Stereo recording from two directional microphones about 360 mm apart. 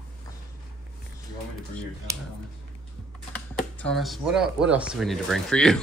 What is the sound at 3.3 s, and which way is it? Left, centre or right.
A man's voice, centre.